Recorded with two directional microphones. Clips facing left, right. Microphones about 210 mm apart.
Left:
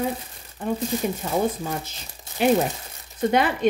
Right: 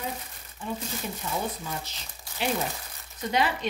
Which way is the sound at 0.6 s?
60° left (ahead or behind).